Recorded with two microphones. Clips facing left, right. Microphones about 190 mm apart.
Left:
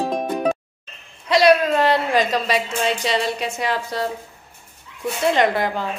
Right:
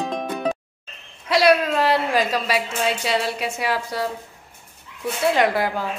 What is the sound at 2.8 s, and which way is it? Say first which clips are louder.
A woman's voice: left 1 dB; 5° right (ahead or behind).